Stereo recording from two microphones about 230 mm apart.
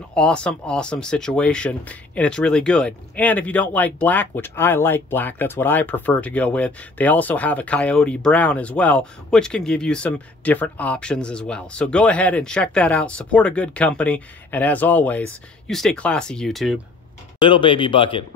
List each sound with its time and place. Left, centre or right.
0.1 s speech: centre
17.4 s speech: left